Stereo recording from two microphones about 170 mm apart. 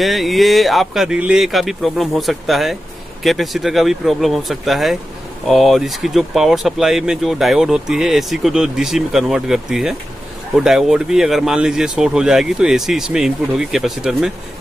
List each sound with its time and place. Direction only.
0.0 s speech: centre (ahead or behind)